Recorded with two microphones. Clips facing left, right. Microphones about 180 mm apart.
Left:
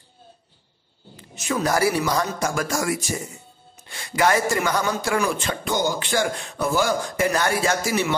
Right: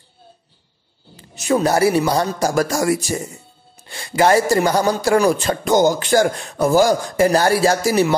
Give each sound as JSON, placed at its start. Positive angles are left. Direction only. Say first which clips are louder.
{"t": 1.1, "sound": "a man's voice", "louder": "right 8 dB", "side_deg": -35}